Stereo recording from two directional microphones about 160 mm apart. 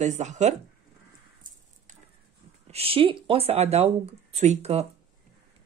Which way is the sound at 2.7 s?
35° right (ahead or behind).